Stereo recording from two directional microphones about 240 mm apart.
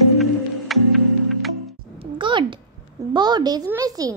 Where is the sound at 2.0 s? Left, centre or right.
Centre.